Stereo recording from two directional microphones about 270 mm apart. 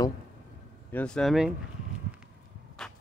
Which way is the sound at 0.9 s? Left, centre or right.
Centre.